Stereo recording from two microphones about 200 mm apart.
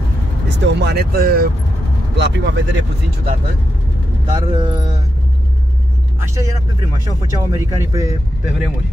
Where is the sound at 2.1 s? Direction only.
60° right (ahead or behind).